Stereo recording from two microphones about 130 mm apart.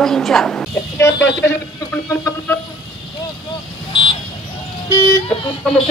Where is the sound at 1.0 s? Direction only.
20° left (ahead or behind).